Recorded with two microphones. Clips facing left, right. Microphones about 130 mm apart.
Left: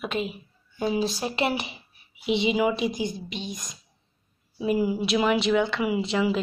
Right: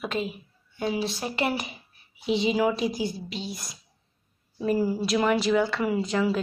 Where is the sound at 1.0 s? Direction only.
30° left (ahead or behind).